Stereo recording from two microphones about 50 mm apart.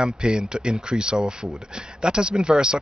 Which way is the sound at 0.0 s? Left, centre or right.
Centre.